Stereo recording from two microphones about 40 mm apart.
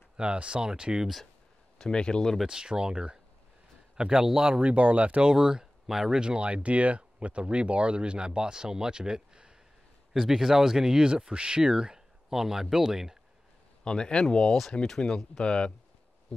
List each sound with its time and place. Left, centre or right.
0.2 s speech: right
1.8 s speech: left
2.4 s speech: right
4.6 s speech: right
5.3 s speech: centre
6.1 s speech: right
10.1 s speech: centre
13.8 s speech: left